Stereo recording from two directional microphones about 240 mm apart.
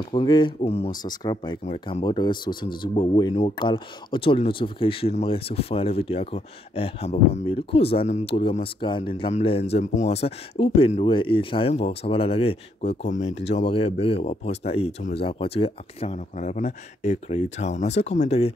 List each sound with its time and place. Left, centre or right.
0.1 s speech: centre